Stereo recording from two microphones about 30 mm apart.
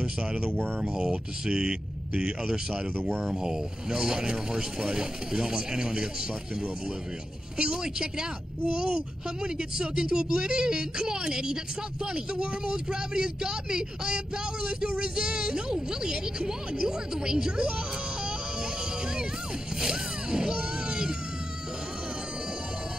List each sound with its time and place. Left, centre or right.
0.0 s speech: right
7.5 s speech: right
19.8 s speech: right